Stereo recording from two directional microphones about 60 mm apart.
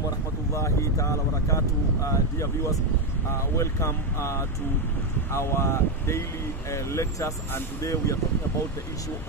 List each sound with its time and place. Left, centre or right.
0.5 s speech: left